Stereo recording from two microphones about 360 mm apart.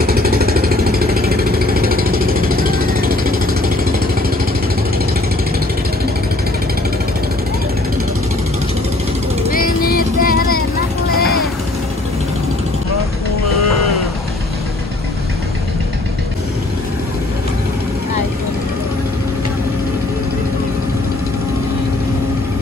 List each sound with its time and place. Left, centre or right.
0.0 s vehicle: right
9.5 s music: left